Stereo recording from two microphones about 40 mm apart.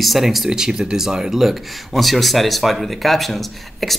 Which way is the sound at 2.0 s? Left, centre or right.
Centre.